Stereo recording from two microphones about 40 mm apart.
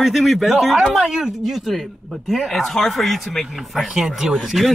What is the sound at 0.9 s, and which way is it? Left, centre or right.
Speech, centre.